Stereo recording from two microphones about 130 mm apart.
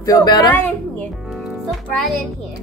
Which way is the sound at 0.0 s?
30° left (ahead or behind).